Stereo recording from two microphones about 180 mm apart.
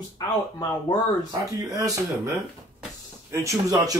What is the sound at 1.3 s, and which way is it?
A man's voice, 20° right (ahead or behind).